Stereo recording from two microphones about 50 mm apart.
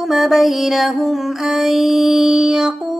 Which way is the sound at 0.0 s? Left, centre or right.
Centre.